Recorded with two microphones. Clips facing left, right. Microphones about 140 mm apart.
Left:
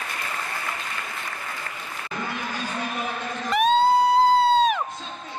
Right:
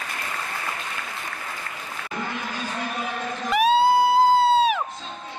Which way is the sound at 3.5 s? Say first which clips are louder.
Right 1 dB; 5° right (ahead or behind).